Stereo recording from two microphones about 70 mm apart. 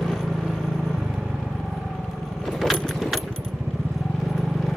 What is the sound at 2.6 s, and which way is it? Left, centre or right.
Vehicle, centre.